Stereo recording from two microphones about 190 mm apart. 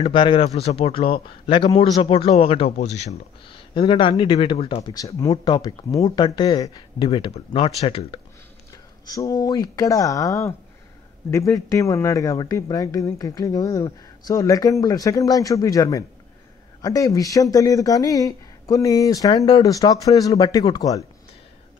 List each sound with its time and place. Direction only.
0.0 s a man's voice: 25° left (ahead or behind)
9.0 s a man's voice: 20° left (ahead or behind)